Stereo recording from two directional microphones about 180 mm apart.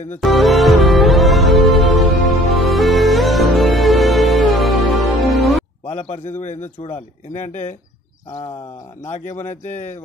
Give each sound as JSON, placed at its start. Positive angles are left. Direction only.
{"t": 0.2, "sound": "music", "side_deg": 0}
{"t": 6.4, "sound": "speech", "side_deg": 40}
{"t": 9.0, "sound": "speech", "side_deg": 40}